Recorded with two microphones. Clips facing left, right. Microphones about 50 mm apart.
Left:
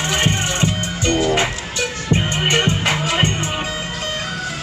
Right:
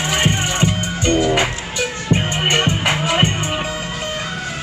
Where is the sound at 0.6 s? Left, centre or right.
Right.